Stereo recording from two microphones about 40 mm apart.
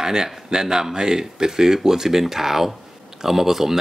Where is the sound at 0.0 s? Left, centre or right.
Centre.